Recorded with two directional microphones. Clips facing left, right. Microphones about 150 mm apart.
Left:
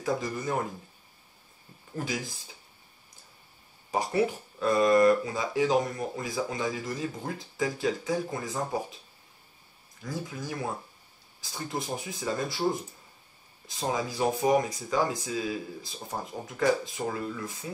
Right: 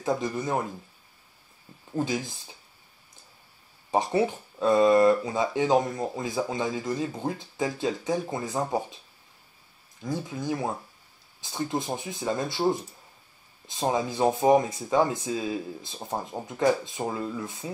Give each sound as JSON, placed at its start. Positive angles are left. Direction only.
{"t": 0.0, "sound": "speech", "side_deg": -20}
{"t": 3.9, "sound": "speech", "side_deg": -25}
{"t": 10.0, "sound": "speech", "side_deg": -20}
{"t": 13.7, "sound": "speech", "side_deg": -25}